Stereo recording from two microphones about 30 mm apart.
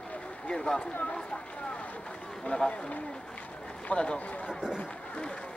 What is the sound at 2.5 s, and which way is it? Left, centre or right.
Speech, left.